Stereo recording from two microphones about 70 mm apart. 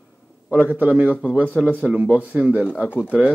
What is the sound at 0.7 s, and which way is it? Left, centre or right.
Speech, right.